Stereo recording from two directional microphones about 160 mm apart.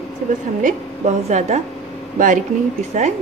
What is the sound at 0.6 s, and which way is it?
A woman's voice, 50° right (ahead or behind).